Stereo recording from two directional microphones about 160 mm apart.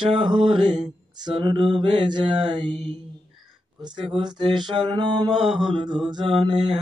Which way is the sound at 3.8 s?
25° right (ahead or behind).